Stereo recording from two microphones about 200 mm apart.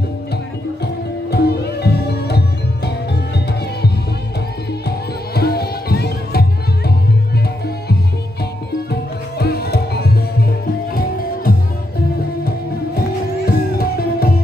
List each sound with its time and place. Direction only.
1.3 s music: 55° left (ahead or behind)
4.8 s music: 50° left (ahead or behind)
9.4 s music: 55° left (ahead or behind)
13.5 s music: 50° left (ahead or behind)